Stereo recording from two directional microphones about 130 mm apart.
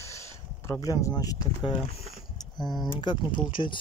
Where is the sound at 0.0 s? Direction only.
20° left (ahead or behind).